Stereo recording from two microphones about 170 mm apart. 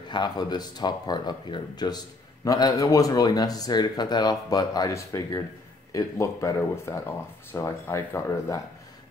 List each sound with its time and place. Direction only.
0.1 s speech: 25° left (ahead or behind)